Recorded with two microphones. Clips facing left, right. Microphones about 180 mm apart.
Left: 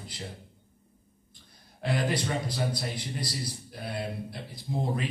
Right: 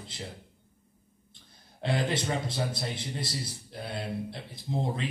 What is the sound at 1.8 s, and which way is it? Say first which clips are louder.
Speech: even; 25° right (ahead or behind).